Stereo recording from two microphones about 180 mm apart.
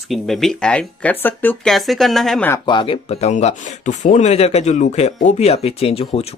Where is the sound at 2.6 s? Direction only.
25° left (ahead or behind).